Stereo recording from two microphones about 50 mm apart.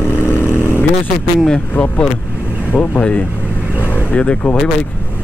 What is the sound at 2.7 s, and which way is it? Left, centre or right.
Speech, centre.